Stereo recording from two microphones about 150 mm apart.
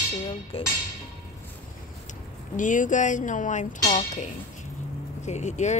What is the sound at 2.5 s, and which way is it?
Speech, 60° left (ahead or behind).